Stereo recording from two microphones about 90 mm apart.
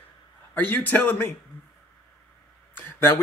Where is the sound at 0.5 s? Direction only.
20° left (ahead or behind).